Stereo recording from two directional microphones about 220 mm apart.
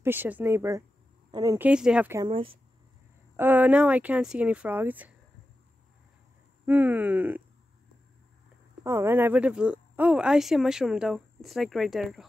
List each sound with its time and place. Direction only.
0.0 s speech: 10° right (ahead or behind)
1.7 s speech: 5° right (ahead or behind)
2.2 s speech: 25° right (ahead or behind)
3.3 s speech: 10° right (ahead or behind)
6.6 s speech: 10° right (ahead or behind)
8.8 s speech: 10° right (ahead or behind)